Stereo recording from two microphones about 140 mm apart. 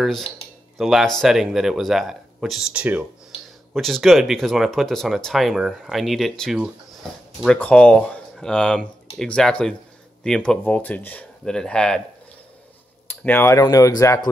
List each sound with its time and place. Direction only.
0.0 s speech: centre (ahead or behind)
3.7 s speech: centre (ahead or behind)
13.1 s speech: 15° left (ahead or behind)